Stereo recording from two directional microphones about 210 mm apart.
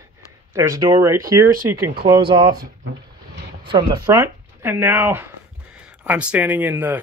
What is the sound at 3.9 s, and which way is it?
Speech, 15° right (ahead or behind).